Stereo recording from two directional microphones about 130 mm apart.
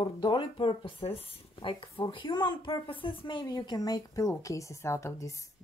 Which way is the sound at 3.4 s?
30° left (ahead or behind).